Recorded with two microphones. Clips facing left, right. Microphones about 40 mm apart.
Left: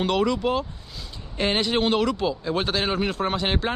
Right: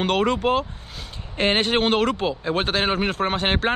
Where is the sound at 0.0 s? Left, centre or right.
Right.